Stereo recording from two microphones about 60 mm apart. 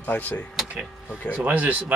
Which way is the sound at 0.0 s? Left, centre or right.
Left.